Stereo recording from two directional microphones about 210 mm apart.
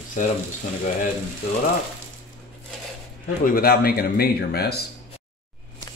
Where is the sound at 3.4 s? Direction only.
45° left (ahead or behind).